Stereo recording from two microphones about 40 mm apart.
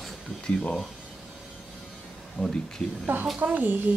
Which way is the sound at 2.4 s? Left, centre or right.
Left.